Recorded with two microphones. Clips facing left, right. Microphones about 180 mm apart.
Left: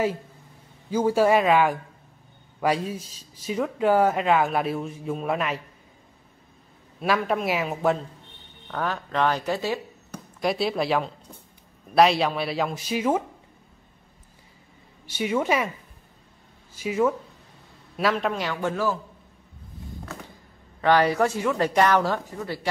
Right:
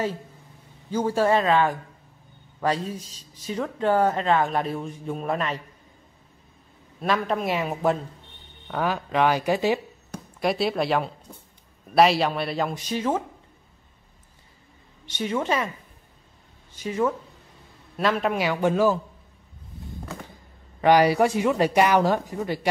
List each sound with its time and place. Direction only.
0.8 s a man's voice: 10° left (ahead or behind)
7.0 s speech: 5° left (ahead or behind); by 9.8 s 15° right (ahead or behind)
10.1 s speech: centre (ahead or behind)
15.0 s a man's voice: 10° left (ahead or behind)
16.7 s a man's voice: 10° left (ahead or behind)
18.3 s speech: 15° right (ahead or behind)
20.8 s speech: 15° right (ahead or behind)